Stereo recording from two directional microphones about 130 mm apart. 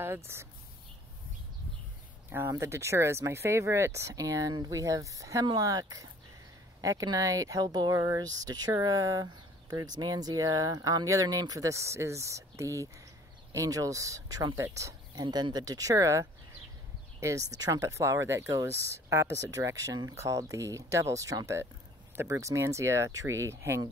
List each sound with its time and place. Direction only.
0.3 s speech: 20° right (ahead or behind)
2.2 s speech: 15° right (ahead or behind)
15.2 s speech: 35° right (ahead or behind); by 23.8 s 20° right (ahead or behind)